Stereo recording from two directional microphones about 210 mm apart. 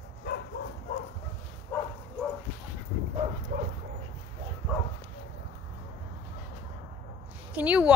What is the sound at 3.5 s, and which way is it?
Dog, 40° right (ahead or behind).